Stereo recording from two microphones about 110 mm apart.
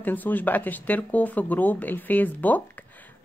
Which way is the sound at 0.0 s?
15° left (ahead or behind).